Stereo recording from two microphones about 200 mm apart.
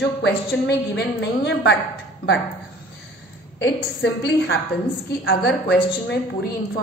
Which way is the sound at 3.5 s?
60° left (ahead or behind).